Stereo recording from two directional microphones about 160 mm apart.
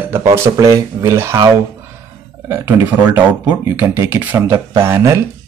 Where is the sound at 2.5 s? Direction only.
15° right (ahead or behind).